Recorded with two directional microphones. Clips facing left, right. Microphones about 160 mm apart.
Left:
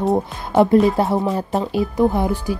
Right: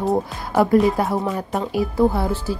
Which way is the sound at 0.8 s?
25° left (ahead or behind).